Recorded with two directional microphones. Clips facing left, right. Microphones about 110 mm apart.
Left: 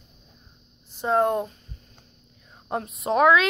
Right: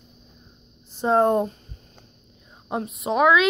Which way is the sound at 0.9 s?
30° right (ahead or behind).